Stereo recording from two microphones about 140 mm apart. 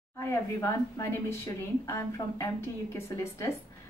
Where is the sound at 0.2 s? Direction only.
20° left (ahead or behind).